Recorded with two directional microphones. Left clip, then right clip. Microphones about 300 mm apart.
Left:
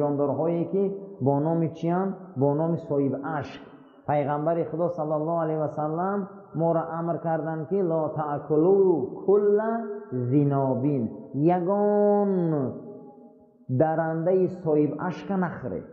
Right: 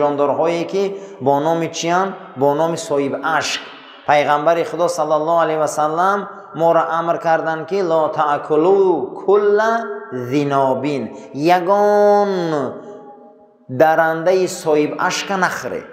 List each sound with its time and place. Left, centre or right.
0.0 s a man's voice: centre
8.8 s a man's voice: right
9.3 s a man's voice: centre
13.7 s a man's voice: centre